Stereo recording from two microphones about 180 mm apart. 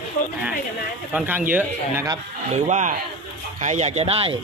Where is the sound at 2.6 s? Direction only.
40° right (ahead or behind).